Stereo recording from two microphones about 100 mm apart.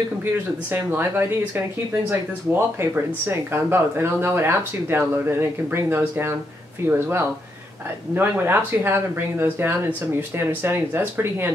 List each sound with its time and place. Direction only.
0.2 s speech: 20° right (ahead or behind)